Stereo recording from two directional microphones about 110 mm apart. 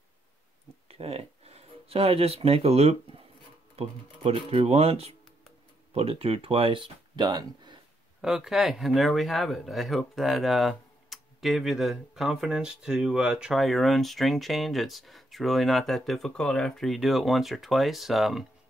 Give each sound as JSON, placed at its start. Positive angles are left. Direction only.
{"t": 0.8, "sound": "speech", "side_deg": -65}
{"t": 8.2, "sound": "speech", "side_deg": -5}